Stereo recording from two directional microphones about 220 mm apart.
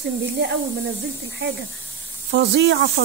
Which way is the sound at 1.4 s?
55° right (ahead or behind).